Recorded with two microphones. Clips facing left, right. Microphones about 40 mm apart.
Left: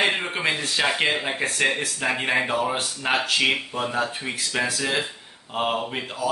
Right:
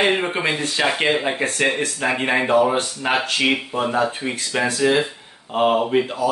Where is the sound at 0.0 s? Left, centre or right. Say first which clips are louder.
Right 4 dB; centre.